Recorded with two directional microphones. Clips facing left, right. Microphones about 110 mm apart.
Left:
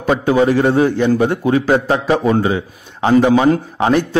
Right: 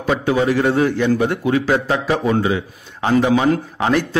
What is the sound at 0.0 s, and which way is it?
A man's voice, 35° left (ahead or behind).